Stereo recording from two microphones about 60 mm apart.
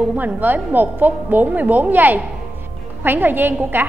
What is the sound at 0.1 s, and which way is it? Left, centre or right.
A woman's voice, right.